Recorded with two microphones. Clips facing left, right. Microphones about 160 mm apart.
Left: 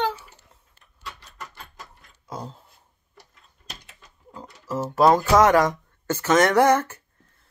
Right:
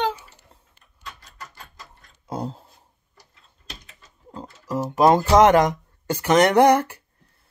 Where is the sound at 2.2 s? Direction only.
30° right (ahead or behind).